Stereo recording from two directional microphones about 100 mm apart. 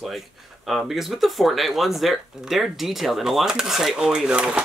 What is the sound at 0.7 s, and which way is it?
Speech, centre (ahead or behind).